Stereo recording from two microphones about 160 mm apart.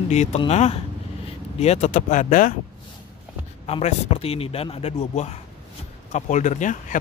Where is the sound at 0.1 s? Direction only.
45° left (ahead or behind).